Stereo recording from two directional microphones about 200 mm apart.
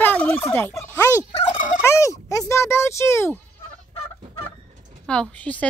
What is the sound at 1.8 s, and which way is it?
Speech, 15° left (ahead or behind).